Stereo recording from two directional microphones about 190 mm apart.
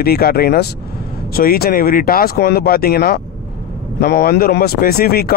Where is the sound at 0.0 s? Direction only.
55° left (ahead or behind).